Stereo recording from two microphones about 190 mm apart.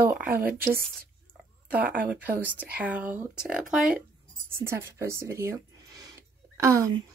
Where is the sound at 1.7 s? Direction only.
10° right (ahead or behind).